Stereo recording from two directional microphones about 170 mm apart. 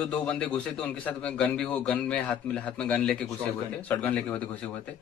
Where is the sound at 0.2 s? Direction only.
5° left (ahead or behind).